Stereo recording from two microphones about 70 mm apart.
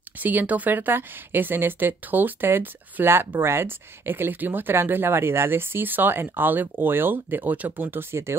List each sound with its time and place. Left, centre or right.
0.2 s speech: right